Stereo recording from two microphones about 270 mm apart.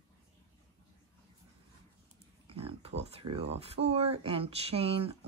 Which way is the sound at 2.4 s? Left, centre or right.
Right.